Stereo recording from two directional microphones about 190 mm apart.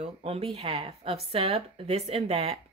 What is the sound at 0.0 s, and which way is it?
A woman's voice, 30° right (ahead or behind).